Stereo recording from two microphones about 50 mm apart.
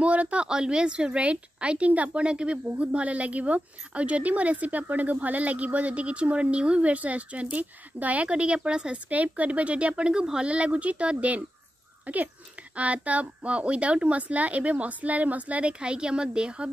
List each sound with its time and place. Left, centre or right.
0.0 s a sound: right
0.5 s speech: centre
9.1 s speech: right